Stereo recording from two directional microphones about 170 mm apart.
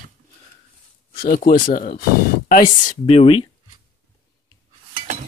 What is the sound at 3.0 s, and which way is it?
Speech, 35° left (ahead or behind).